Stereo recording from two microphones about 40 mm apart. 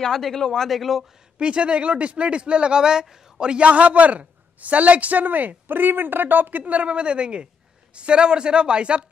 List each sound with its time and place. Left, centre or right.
0.0 s a man's voice: centre
0.7 s speech: centre
1.4 s a man's voice: right
3.6 s a man's voice: right
6.6 s a man's voice: right